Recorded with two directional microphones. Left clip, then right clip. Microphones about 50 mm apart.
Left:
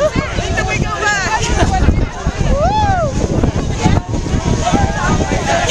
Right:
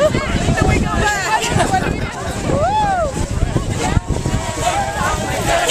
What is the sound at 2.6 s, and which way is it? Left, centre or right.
Vehicle, left.